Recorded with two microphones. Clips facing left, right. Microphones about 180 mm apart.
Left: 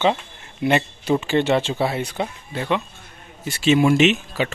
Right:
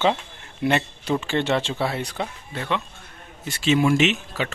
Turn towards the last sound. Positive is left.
turn(degrees=20)  # may be behind; listen again after turning